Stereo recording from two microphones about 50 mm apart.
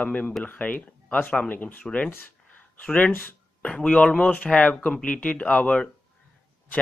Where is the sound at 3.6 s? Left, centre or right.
Left.